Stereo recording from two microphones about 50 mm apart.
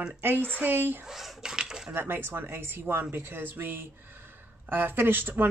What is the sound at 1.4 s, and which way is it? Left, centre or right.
Dishes, centre.